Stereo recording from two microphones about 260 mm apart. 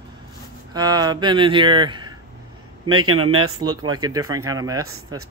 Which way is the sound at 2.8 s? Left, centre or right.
Right.